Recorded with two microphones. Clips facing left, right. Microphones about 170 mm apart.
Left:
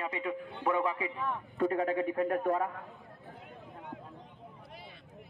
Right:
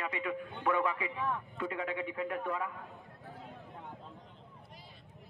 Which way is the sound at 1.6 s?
40° left (ahead or behind).